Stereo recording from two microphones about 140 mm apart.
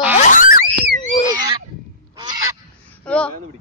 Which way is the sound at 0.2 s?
70° left (ahead or behind).